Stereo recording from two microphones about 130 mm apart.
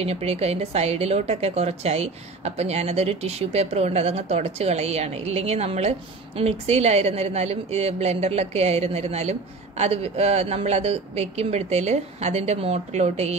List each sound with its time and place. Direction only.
0.0 s a woman's voice: 50° right (ahead or behind)